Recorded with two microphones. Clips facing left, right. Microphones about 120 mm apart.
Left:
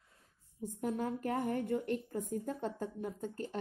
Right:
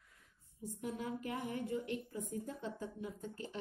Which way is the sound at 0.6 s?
50° left (ahead or behind).